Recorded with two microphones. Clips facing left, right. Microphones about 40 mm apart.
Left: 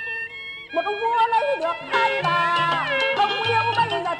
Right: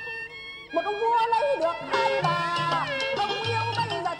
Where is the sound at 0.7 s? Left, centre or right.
Left.